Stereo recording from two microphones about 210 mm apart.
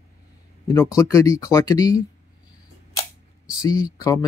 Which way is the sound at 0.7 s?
15° left (ahead or behind).